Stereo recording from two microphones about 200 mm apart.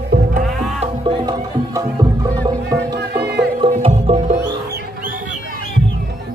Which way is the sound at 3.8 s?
30° right (ahead or behind).